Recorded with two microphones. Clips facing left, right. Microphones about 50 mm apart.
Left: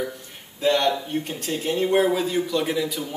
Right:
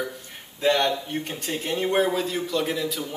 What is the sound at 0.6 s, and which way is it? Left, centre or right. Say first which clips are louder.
Speech: left 1 dB; centre.